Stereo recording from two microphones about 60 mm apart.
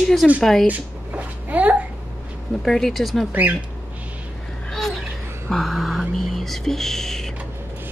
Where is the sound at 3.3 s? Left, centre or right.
Right.